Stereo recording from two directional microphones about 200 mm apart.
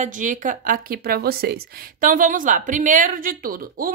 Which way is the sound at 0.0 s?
40° right (ahead or behind).